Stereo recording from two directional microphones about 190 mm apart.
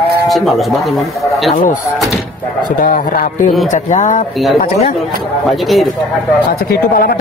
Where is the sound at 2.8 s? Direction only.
50° left (ahead or behind).